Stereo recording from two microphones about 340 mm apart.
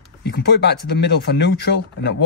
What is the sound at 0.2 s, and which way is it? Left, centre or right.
Speech, left.